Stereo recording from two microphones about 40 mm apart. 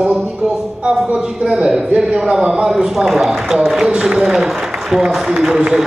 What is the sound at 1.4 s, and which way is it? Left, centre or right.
A man's voice, centre.